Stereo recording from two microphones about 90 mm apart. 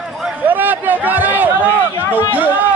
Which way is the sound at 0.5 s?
20° right (ahead or behind).